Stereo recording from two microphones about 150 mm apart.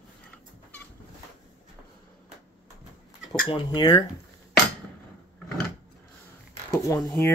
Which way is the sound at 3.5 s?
30° left (ahead or behind).